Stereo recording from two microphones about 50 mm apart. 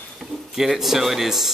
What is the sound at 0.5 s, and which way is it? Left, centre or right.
Speech, centre.